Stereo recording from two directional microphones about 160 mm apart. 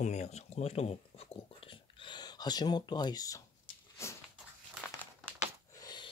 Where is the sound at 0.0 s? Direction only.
45° left (ahead or behind); by 3.4 s 20° left (ahead or behind).